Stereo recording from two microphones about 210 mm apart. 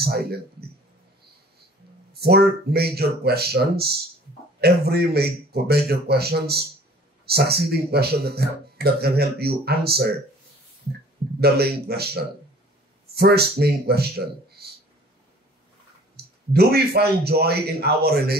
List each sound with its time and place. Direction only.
0.0 s speech: 50° right (ahead or behind)
2.2 s speech: 50° right (ahead or behind)
11.4 s speech: 50° right (ahead or behind)
16.2 s clicking: 50° right (ahead or behind)
16.5 s speech: 50° right (ahead or behind)